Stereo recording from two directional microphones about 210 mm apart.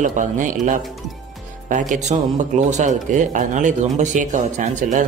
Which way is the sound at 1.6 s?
40° right (ahead or behind).